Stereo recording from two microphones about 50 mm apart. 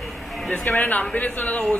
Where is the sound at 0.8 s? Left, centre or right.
Left.